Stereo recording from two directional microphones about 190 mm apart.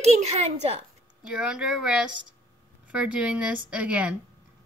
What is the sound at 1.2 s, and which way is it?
A woman's voice, 5° right (ahead or behind).